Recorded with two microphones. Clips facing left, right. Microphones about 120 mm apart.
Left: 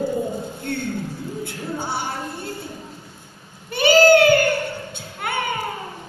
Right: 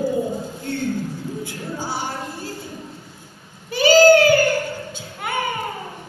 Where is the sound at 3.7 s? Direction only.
60° left (ahead or behind).